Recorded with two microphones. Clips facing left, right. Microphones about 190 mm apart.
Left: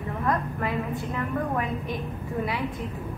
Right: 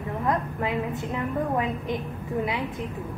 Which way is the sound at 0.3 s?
20° right (ahead or behind).